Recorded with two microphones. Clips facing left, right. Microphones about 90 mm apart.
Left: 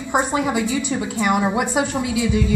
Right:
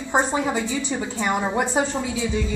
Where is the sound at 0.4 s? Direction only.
10° left (ahead or behind).